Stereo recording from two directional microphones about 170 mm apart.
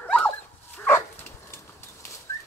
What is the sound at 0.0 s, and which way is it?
Dog, 5° left (ahead or behind).